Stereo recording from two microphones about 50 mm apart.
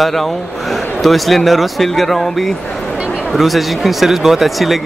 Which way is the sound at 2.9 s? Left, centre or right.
Centre.